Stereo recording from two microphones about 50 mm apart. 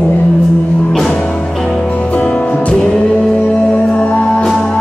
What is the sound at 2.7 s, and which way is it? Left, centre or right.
Music, centre.